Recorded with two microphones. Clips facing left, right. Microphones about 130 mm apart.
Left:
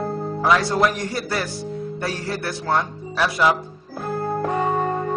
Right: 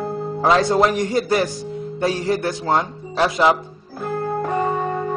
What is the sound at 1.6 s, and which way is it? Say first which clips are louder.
Speech: right 4 dB; 15° right (ahead or behind).